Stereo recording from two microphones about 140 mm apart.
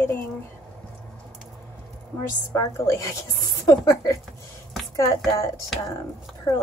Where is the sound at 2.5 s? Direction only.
20° left (ahead or behind).